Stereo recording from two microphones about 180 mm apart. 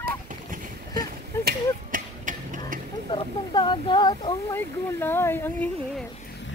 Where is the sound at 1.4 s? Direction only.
50° right (ahead or behind).